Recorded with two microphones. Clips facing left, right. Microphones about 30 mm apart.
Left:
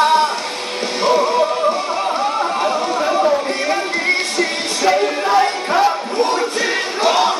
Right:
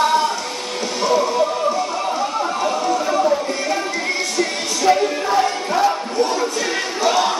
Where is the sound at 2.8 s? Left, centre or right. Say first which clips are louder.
Even; left.